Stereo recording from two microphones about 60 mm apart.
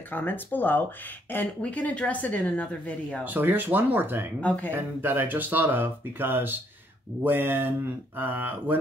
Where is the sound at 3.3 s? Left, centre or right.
Right.